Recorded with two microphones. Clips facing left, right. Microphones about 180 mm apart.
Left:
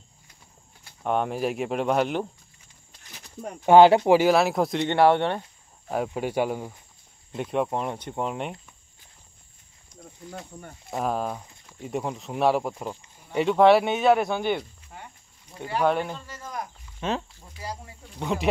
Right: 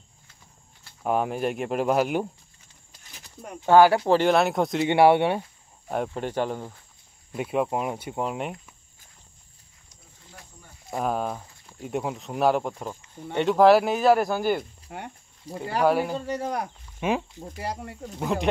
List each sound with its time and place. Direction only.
1.0 s speech: 5° right (ahead or behind)
3.6 s speech: 20° left (ahead or behind)
4.2 s speech: centre (ahead or behind)
4.8 s speech: 10° right (ahead or behind)
6.0 s speech: 10° left (ahead or behind)
7.3 s speech: 5° right (ahead or behind)
10.9 s speech: centre (ahead or behind)
14.9 s speech: 70° right (ahead or behind)
15.5 s speech: 35° right (ahead or behind)
15.8 s speech: 5° right (ahead or behind)
16.3 s speech: 70° right (ahead or behind)
17.0 s speech: 10° right (ahead or behind)
17.4 s speech: 65° right (ahead or behind)
18.2 s speech: centre (ahead or behind)